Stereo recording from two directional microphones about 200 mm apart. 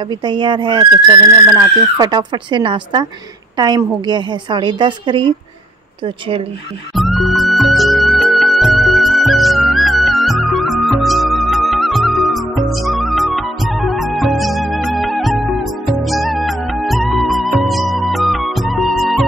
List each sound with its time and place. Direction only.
0.1 s a woman's voice: 25° right (ahead or behind)
2.0 s a woman's voice: 20° right (ahead or behind)
7.0 s music: centre (ahead or behind)